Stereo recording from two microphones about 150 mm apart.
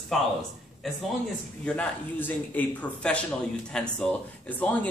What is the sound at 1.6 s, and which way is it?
Speech, 10° left (ahead or behind).